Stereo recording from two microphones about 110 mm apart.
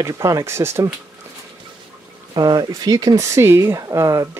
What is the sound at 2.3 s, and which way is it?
Speech, 40° right (ahead or behind).